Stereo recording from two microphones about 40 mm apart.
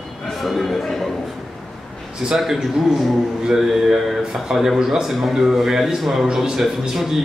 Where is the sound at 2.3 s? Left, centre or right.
Centre.